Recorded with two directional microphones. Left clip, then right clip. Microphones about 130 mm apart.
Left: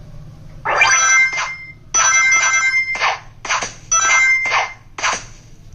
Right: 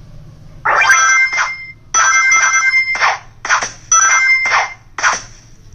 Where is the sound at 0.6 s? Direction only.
15° left (ahead or behind).